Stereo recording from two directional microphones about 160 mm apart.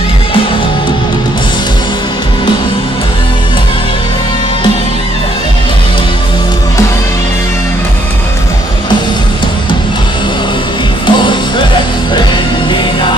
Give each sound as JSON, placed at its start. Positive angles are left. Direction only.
{"t": 11.1, "sound": "music", "side_deg": 30}